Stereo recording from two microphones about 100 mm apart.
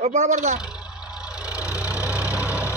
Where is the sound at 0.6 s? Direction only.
10° right (ahead or behind).